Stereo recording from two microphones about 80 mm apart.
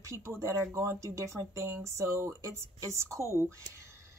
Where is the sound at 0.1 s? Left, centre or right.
Right.